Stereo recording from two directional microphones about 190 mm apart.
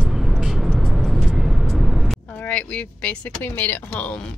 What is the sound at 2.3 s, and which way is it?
Speech, 10° left (ahead or behind).